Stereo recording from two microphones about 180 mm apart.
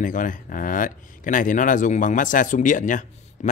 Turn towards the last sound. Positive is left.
turn(degrees=45)  # may be behind; listen again after turning